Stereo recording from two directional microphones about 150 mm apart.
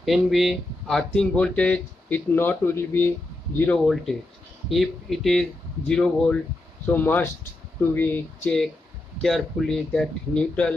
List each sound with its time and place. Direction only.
0.0 s speech: centre (ahead or behind)